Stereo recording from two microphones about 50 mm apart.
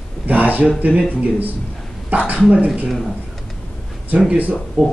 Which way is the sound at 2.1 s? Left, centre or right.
Right.